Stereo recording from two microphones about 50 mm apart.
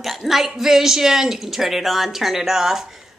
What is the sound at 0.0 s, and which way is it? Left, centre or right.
A man's voice, centre.